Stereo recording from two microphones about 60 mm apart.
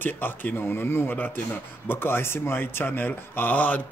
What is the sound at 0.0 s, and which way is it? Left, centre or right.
A man's voice, left.